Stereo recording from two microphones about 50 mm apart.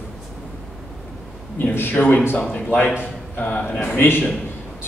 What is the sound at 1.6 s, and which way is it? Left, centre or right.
A man's voice, left.